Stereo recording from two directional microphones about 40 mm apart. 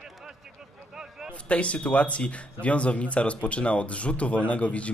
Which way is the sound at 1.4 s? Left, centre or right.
Left.